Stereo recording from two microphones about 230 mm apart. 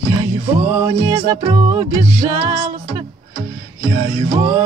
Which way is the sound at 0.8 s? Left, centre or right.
Centre.